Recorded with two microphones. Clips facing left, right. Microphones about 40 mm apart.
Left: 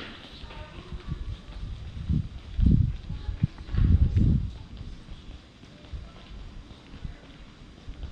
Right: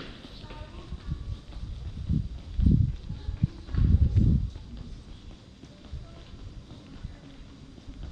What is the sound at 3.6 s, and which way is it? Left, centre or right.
Music, left.